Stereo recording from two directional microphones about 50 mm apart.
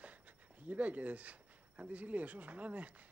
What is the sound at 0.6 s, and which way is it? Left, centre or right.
Speech, right.